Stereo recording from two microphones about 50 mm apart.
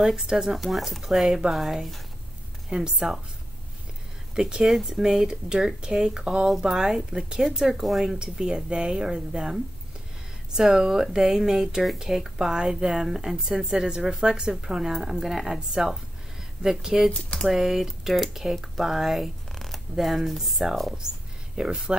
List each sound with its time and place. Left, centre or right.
0.0 s speech: centre
0.6 s speech: centre
4.4 s speech: centre
4.6 s speech: centre
21.5 s speech: centre